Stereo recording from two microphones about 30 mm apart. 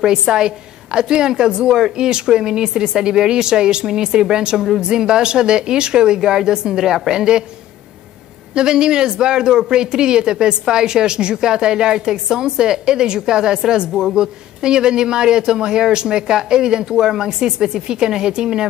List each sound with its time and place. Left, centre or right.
0.2 s a man's voice: right
7.2 s a man's voice: right
8.5 s a man's voice: right